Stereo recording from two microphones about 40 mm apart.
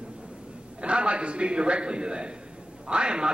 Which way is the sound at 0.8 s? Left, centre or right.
Right.